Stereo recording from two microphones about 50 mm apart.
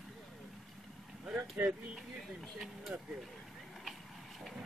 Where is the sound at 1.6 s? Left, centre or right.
Right.